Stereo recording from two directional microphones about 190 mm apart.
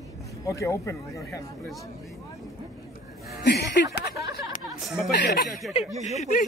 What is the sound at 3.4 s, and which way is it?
Speech, 60° left (ahead or behind).